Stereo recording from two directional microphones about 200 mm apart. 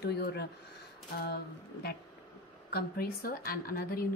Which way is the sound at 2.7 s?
50° left (ahead or behind).